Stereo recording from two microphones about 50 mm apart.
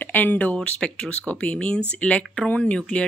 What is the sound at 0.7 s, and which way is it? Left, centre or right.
Speech, left.